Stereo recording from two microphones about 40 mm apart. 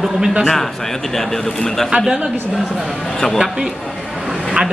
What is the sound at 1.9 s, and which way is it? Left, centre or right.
Speech, centre.